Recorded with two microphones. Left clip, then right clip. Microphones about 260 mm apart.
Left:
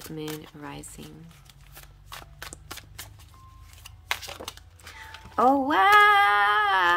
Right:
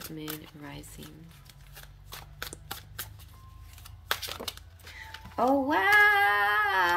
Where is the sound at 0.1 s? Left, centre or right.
Centre.